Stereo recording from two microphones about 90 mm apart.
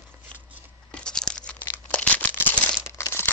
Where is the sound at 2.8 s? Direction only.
30° left (ahead or behind).